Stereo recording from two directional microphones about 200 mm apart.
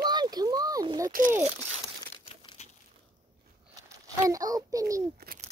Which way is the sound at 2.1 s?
25° left (ahead or behind).